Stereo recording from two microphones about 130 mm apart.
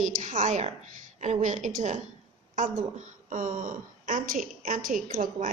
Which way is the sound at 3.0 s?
90° right.